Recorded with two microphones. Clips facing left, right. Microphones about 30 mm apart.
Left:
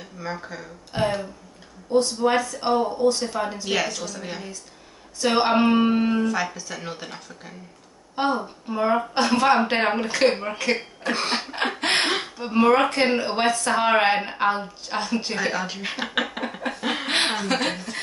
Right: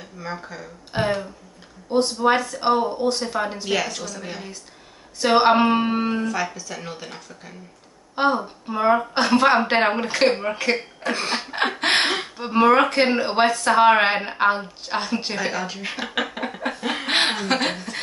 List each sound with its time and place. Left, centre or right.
0.0 s speech: centre
0.9 s speech: centre
3.6 s speech: centre
5.2 s speech: right
6.2 s speech: centre
8.2 s speech: centre
11.5 s a sound: centre
12.4 s speech: centre
15.3 s speech: centre
16.7 s a sound: centre
17.1 s a sound: centre